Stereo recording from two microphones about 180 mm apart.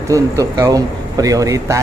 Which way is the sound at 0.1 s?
20° right (ahead or behind).